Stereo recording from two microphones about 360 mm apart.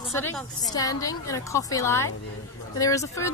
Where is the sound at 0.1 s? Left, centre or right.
Centre.